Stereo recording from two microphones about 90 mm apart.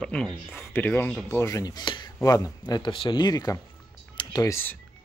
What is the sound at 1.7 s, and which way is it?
Speech, 60° left (ahead or behind).